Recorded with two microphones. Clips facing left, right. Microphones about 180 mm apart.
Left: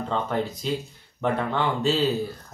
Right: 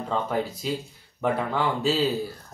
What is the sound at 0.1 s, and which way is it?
Speech, 5° right (ahead or behind).